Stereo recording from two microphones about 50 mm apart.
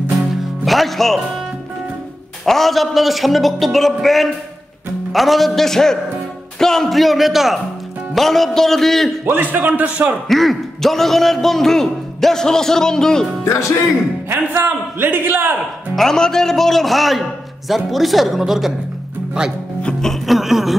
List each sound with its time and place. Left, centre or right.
0.7 s speech: centre
2.4 s speech: centre
9.2 s speech: right
10.2 s a man's voice: centre
13.5 s speech: left
14.3 s a man's voice: right
15.9 s speech: centre
20.0 s music: centre
20.3 s a sound: centre